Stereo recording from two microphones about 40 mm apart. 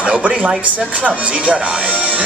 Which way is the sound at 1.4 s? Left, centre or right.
Right.